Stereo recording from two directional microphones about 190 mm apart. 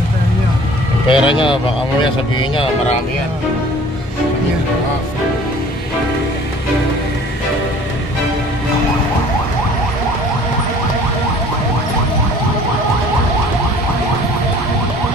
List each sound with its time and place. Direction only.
1.0 s speech: 25° left (ahead or behind)